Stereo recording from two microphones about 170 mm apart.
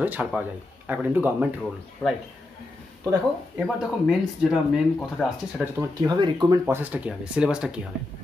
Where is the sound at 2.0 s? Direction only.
5° left (ahead or behind).